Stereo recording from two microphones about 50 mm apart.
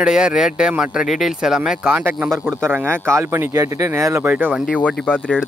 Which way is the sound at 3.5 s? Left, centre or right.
Right.